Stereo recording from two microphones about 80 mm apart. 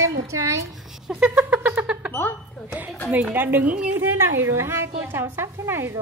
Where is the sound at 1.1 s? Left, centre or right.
Centre.